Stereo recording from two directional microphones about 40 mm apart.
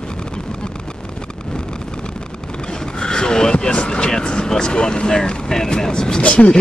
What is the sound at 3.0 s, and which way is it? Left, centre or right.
Speech, centre.